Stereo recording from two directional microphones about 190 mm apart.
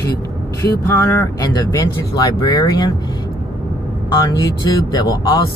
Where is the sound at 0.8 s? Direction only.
15° left (ahead or behind).